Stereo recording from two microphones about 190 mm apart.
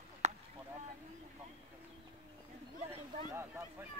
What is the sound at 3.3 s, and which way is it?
Speech, 10° right (ahead or behind).